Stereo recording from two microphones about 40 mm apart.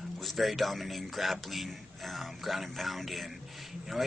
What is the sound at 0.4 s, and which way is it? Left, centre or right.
Speech, centre.